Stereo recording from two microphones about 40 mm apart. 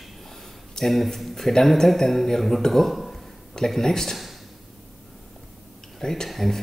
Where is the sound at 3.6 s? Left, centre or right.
Centre.